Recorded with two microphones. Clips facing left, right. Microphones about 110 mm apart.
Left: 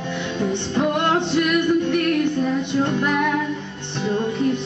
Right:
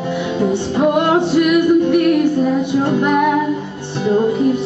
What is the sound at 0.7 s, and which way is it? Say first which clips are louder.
Music: right 6 dB; 10° right (ahead or behind).